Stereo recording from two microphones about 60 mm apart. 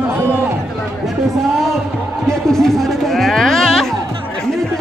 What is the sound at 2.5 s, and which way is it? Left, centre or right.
Music, centre.